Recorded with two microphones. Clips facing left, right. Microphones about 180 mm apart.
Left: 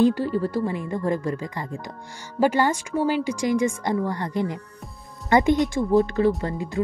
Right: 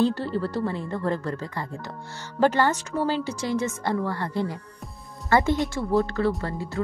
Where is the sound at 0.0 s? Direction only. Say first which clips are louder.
Left 4 dB; 10° left (ahead or behind).